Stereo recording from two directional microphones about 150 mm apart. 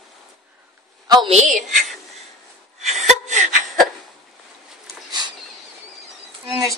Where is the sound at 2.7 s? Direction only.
50° right (ahead or behind).